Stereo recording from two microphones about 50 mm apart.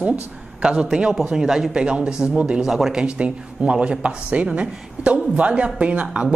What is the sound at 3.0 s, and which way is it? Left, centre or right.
A woman's voice, right.